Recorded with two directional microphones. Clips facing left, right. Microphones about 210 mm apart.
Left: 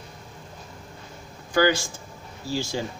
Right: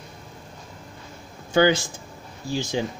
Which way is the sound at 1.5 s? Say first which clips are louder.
Right 2 dB; 20° right (ahead or behind).